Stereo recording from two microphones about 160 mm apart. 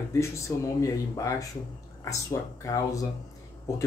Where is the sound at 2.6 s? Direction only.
20° left (ahead or behind).